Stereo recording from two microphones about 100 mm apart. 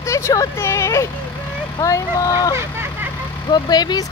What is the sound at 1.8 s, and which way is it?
Speech, 35° left (ahead or behind).